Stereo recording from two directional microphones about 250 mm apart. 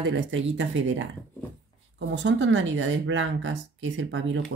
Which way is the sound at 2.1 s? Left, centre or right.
Right.